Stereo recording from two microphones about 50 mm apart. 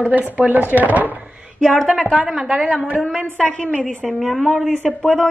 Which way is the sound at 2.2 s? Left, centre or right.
Centre.